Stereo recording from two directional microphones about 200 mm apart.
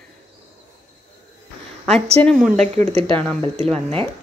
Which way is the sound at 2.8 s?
30° right (ahead or behind).